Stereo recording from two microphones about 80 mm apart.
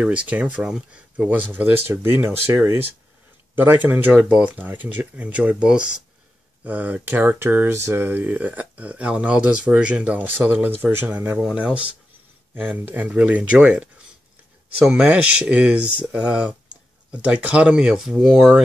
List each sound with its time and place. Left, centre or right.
0.0 s speech: centre; by 2.8 s right
3.5 s speech: right
14.9 s speech: centre